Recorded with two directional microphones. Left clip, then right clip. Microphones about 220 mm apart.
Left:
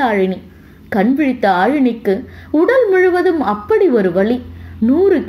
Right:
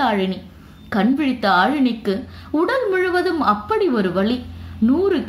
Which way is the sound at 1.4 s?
5° left (ahead or behind).